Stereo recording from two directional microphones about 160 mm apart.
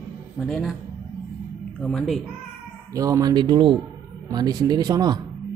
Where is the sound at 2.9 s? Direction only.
20° right (ahead or behind).